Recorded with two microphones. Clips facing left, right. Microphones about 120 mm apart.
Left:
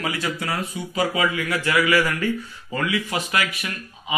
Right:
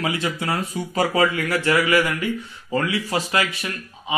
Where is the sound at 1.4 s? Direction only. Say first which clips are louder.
Right 1 dB; 30° right (ahead or behind).